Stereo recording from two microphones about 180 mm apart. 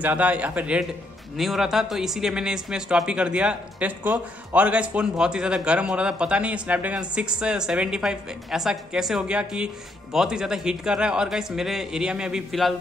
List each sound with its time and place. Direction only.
0.0 s a man's voice: 10° right (ahead or behind)